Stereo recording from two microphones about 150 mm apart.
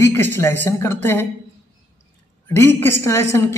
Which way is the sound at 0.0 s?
15° left (ahead or behind).